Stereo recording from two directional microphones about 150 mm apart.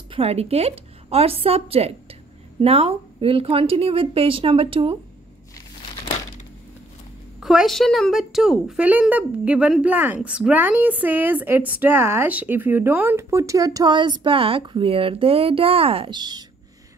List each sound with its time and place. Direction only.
0.1 s a woman's voice: 40° right (ahead or behind)
7.3 s a woman's voice: centre (ahead or behind); by 16.4 s 30° right (ahead or behind)